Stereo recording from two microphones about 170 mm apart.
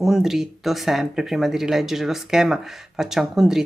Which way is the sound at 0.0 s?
Centre (ahead or behind).